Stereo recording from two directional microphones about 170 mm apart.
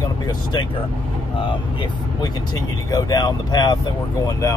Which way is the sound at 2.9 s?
20° left (ahead or behind).